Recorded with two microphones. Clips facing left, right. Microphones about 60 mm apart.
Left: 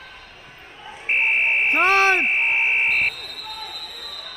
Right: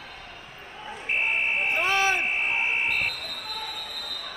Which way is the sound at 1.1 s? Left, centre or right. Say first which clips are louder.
Left 6 dB; left.